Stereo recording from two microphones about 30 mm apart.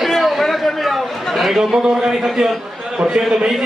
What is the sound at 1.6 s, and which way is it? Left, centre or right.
A man's voice, right.